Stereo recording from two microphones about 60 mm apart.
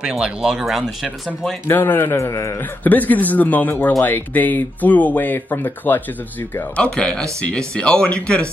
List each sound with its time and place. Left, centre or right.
0.0 s speech: centre
1.7 s speech: left
2.1 s a man's voice: left
2.8 s a man's voice: left
6.8 s speech: centre